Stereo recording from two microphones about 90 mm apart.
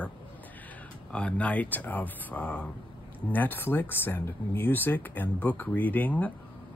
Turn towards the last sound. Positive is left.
turn(degrees=15)  # may be behind; listen again after turning